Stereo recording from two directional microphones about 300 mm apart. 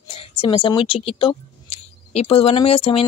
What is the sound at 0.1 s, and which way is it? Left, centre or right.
Speech, centre.